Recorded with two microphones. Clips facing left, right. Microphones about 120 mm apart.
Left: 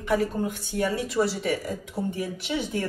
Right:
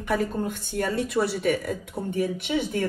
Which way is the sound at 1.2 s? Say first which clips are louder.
Right 2 dB; 55° right (ahead or behind).